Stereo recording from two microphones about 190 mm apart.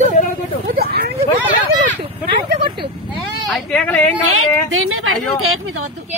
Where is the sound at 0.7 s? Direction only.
55° right (ahead or behind).